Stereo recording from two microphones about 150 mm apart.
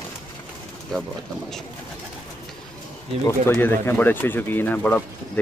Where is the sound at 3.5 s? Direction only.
15° left (ahead or behind).